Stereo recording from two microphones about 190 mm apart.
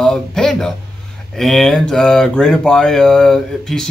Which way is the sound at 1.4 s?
Centre (ahead or behind).